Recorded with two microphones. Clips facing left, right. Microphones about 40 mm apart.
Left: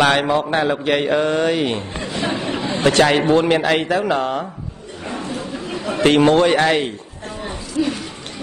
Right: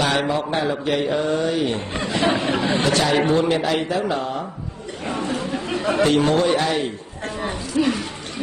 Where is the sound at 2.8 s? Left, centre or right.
Left.